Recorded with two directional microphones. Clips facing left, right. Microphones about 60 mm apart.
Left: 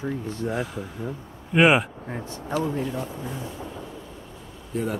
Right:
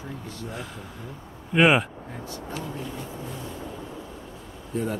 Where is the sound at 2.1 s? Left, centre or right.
Left.